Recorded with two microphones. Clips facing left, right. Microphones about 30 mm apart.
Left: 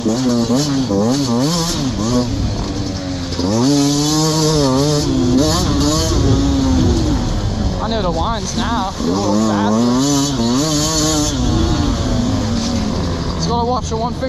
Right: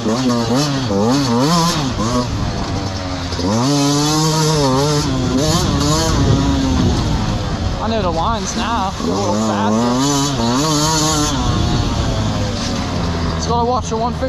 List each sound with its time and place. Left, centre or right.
0.1 s speech: centre
3.4 s chainsaw: centre
8.5 s speech: centre
9.7 s a sound: centre